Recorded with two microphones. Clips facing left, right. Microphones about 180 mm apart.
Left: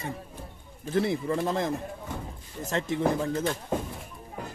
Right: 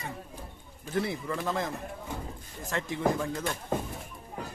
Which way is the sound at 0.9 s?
30° left (ahead or behind).